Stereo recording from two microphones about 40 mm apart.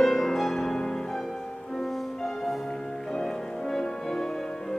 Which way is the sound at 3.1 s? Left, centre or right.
Centre.